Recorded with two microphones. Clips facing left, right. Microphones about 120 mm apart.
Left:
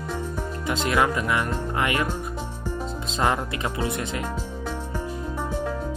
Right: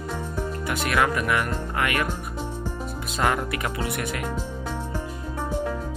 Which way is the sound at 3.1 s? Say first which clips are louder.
Even; 25° left (ahead or behind).